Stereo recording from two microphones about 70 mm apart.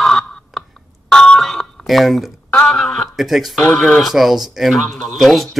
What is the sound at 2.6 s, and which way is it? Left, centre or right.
Speech, centre.